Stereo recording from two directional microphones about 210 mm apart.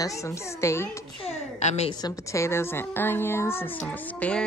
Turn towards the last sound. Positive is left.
turn(degrees=5)  # may be behind; listen again after turning